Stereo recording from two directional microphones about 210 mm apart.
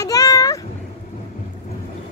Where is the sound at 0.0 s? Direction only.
15° left (ahead or behind).